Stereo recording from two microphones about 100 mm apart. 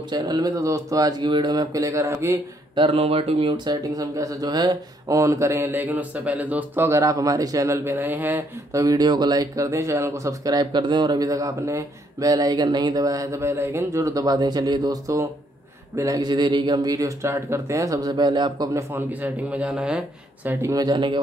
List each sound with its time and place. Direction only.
0.1 s speech: 40° right (ahead or behind)
2.8 s speech: 85° right; by 7.0 s 20° right (ahead or behind)
7.0 s speech: 35° right (ahead or behind); by 8.5 s 20° right (ahead or behind)
8.7 s speech: 40° right (ahead or behind)
19.2 s a man's voice: 10° right (ahead or behind)
20.7 s speech: 45° right (ahead or behind)